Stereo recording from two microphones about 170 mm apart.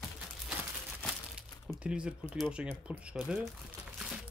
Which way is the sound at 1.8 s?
5° right (ahead or behind).